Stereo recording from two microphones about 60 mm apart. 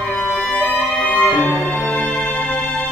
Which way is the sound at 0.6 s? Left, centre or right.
Left.